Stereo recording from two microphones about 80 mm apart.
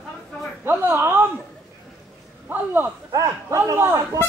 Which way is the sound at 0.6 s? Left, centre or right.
Right.